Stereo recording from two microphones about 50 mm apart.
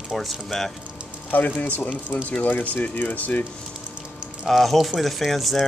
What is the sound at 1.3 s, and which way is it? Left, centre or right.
Speech, left.